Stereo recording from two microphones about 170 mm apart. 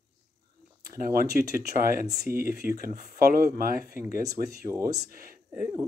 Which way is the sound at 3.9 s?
15° right (ahead or behind).